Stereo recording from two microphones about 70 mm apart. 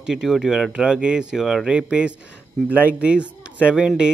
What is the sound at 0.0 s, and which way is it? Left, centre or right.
Speech, centre.